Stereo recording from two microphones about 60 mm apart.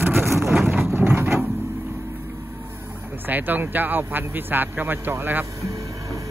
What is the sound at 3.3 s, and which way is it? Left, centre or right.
A man's voice, right.